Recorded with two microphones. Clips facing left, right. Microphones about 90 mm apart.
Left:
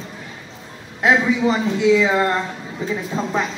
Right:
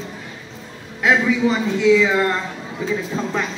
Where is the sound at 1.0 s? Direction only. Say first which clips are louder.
Even; 25° left (ahead or behind).